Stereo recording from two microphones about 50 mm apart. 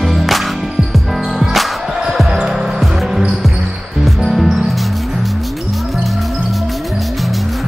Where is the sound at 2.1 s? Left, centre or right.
Centre.